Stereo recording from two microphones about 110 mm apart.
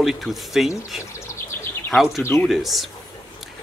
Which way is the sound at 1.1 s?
25° left (ahead or behind).